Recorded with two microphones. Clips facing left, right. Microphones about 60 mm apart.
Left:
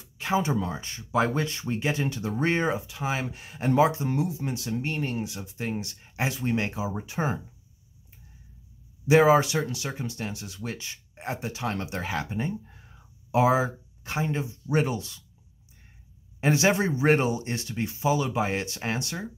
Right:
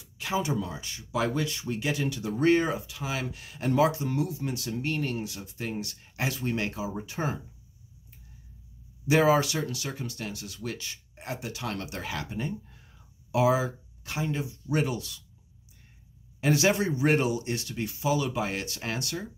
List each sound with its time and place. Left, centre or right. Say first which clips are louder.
0.0 s speech: left 4 dB; left
9.0 s speech: left 4 dB; left
16.3 s speech: left 1 dB; left